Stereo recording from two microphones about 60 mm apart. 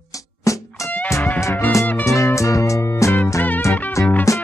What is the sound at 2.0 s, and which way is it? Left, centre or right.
Music, left.